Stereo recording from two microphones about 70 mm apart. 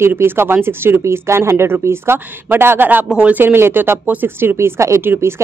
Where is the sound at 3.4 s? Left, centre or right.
Right.